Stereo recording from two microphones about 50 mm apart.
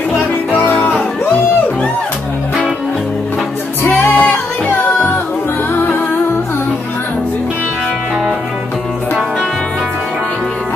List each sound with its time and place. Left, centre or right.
3.8 s music: left